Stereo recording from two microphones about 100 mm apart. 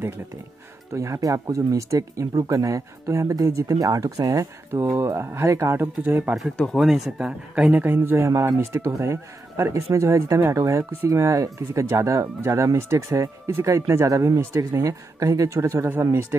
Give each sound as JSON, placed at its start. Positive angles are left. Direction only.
{"t": 0.9, "sound": "speech", "side_deg": -30}
{"t": 6.5, "sound": "speech", "side_deg": 5}
{"t": 6.8, "sound": "speech", "side_deg": -5}